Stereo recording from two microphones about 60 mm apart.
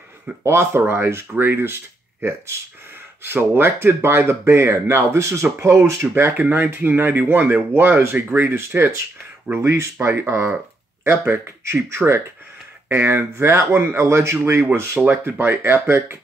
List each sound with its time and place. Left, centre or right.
0.4 s speech: right
6.3 s speech: right